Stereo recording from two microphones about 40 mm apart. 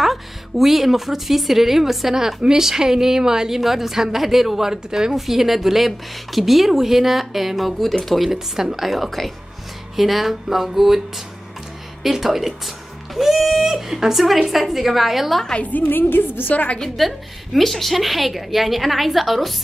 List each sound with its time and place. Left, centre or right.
0.0 s speech: centre
8.3 s speech: centre
15.9 s speech: left
16.5 s a woman's voice: left
16.8 s speech: centre